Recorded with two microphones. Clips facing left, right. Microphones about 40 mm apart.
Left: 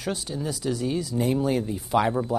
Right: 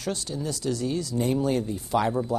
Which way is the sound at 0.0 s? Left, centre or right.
Centre.